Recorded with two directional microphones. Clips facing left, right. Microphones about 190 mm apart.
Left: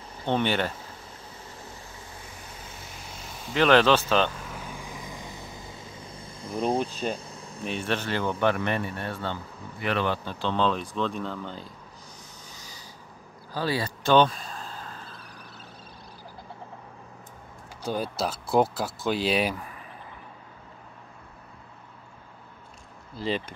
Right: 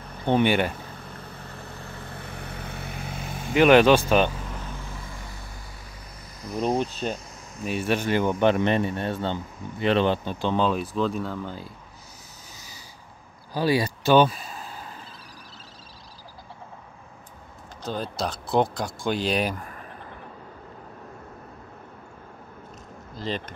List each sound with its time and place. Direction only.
0.2 s speech: 15° right (ahead or behind)
0.7 s vehicle: 60° right (ahead or behind)
3.5 s speech: 15° right (ahead or behind)
4.5 s vehicle: 10° left (ahead or behind)
6.1 s a sound: 30° left (ahead or behind)
7.6 s speech: 5° right (ahead or behind)
13.5 s a sound: 15° right (ahead or behind)
17.8 s speech: 10° left (ahead or behind)
23.1 s speech: 10° left (ahead or behind)